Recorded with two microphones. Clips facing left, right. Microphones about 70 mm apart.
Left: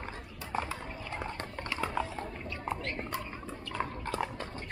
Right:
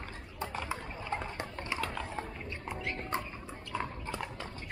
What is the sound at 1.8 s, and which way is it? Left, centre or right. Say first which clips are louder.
Liquid: left 3 dB; centre.